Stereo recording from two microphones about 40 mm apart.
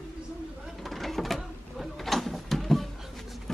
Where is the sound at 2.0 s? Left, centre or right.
Centre.